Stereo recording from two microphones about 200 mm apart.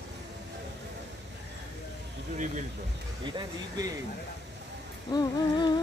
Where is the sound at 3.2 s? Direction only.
20° right (ahead or behind).